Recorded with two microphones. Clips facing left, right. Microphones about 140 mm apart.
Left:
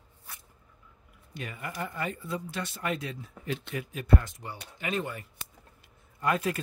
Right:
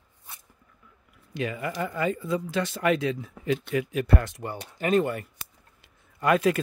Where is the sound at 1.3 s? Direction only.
90° right; by 5.2 s 55° right (ahead or behind).